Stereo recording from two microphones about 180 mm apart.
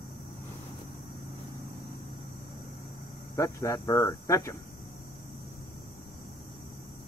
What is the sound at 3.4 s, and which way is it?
Speech, 15° left (ahead or behind).